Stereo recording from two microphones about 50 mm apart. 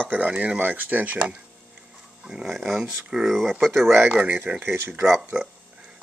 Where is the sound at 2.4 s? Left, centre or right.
Centre.